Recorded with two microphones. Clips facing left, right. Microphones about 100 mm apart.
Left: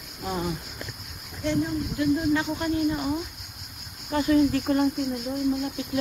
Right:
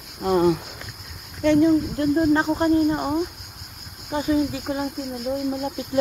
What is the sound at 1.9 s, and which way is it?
Speech, 45° right (ahead or behind).